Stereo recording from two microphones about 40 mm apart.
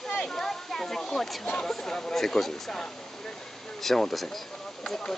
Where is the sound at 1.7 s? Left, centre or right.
Centre.